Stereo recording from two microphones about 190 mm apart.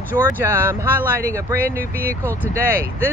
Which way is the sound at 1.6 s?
50° right (ahead or behind).